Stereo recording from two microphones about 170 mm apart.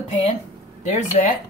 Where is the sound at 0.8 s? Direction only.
45° left (ahead or behind).